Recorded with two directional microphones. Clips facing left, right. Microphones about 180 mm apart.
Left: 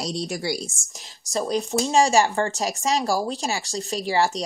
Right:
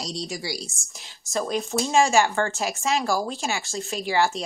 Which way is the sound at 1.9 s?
35° left (ahead or behind).